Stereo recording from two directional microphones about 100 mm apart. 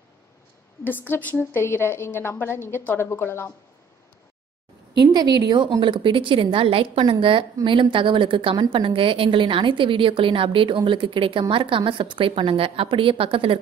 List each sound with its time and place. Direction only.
0.8 s a woman's voice: 20° left (ahead or behind)
5.1 s a woman's voice: 45° right (ahead or behind); by 13.6 s 65° right (ahead or behind)